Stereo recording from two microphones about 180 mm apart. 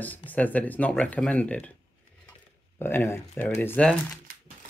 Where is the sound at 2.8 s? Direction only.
15° left (ahead or behind).